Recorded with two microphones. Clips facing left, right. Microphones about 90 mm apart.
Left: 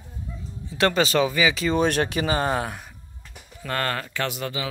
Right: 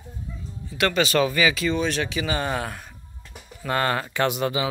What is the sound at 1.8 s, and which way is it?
Speech, 50° left (ahead or behind).